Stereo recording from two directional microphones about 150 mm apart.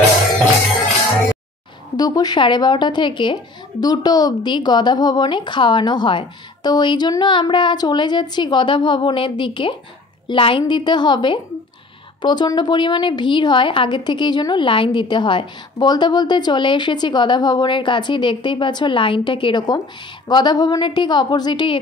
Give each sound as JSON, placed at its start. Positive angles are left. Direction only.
{"t": 2.0, "sound": "a woman's voice", "side_deg": 25}